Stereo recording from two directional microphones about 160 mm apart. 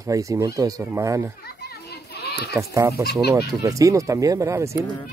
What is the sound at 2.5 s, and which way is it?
Speech, 20° right (ahead or behind).